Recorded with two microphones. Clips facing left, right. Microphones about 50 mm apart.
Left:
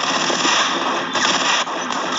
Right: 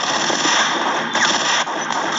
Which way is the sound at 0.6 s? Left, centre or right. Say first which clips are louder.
Right 1 dB; right.